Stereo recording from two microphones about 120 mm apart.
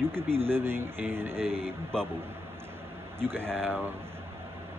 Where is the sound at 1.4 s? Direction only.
55° right (ahead or behind).